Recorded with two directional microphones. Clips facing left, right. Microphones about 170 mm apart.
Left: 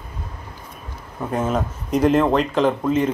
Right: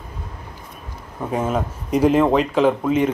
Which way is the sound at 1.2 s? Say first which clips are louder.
Even; 10° right (ahead or behind).